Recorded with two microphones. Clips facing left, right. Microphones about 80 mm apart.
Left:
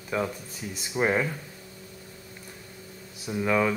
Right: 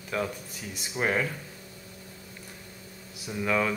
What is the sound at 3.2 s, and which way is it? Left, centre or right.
Speech, centre.